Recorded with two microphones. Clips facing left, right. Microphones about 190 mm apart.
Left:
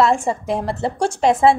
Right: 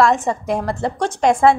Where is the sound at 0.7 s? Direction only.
5° left (ahead or behind).